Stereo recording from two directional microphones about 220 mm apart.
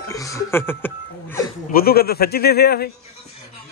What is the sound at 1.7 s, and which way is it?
A man's voice, 40° left (ahead or behind).